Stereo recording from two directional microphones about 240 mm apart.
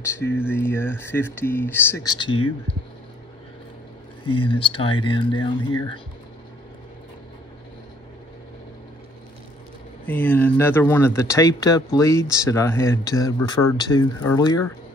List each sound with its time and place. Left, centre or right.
0.1 s speech: centre
4.3 s speech: left
10.0 s speech: centre